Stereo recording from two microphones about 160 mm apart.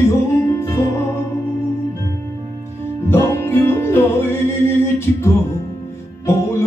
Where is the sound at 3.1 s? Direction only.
15° left (ahead or behind).